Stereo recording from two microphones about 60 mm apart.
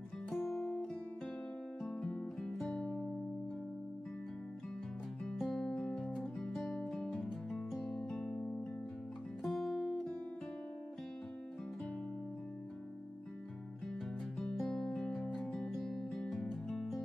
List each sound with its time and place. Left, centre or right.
0.3 s music: centre
1.8 s music: centre
2.7 s music: centre
5.2 s music: centre
5.8 s music: centre
6.1 s music: centre
9.4 s music: centre
14.4 s music: centre